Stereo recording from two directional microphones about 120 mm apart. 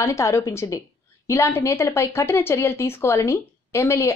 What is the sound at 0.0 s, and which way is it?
A woman's voice, 25° left (ahead or behind).